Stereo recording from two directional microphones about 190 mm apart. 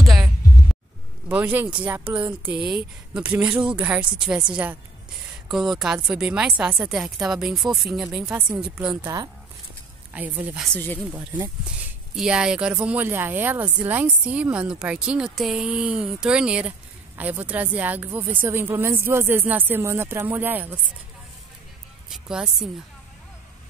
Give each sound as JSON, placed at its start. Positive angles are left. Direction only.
{"t": 0.0, "sound": "heart sounds", "side_deg": 0}
{"t": 1.3, "sound": "a woman's voice", "side_deg": -10}
{"t": 10.1, "sound": "a woman's voice", "side_deg": -10}
{"t": 10.7, "sound": "speech", "side_deg": 10}
{"t": 11.1, "sound": "a woman's voice", "side_deg": -10}
{"t": 22.1, "sound": "speech", "side_deg": 0}